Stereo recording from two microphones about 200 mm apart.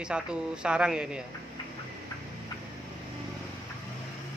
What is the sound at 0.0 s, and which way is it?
Speech, 5° right (ahead or behind).